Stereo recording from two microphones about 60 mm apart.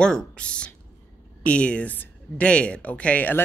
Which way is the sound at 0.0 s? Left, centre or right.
Centre.